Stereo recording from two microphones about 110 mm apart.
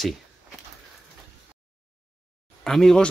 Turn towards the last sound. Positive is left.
turn(degrees=5)  # may be behind; listen again after turning